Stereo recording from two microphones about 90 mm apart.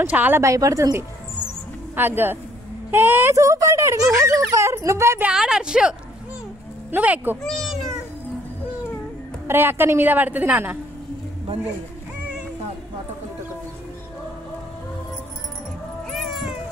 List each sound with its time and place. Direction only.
0.0 s a woman's voice: 20° right (ahead or behind)
0.4 s speech: 35° right (ahead or behind)
2.0 s a woman's voice: 25° right (ahead or behind)
5.3 s speech: 5° right (ahead or behind)
6.9 s a woman's voice: 20° right (ahead or behind)
7.4 s speech: centre (ahead or behind)
9.5 s a woman's voice: 25° right (ahead or behind)
16.1 s cat: centre (ahead or behind)